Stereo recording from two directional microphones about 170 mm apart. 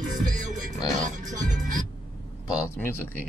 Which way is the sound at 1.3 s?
50° right (ahead or behind).